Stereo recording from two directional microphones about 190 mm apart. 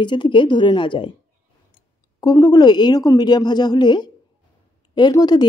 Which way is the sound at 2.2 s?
20° left (ahead or behind).